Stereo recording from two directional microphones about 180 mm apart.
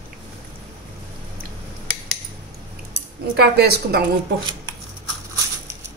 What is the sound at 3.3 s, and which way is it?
Speech, 65° right (ahead or behind).